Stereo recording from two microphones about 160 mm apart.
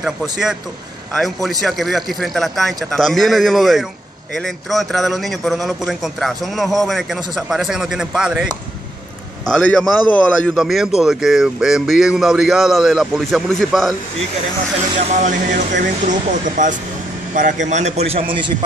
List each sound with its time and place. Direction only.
0.0 s a man's voice: 5° right (ahead or behind)
9.5 s a man's voice: 5° left (ahead or behind)
15.0 s speech: 50° right (ahead or behind)